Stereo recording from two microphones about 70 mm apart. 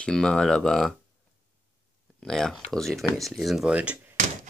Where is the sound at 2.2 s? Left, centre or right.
Centre.